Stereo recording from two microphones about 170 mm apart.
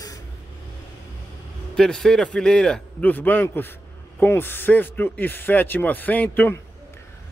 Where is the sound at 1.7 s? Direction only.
5° left (ahead or behind).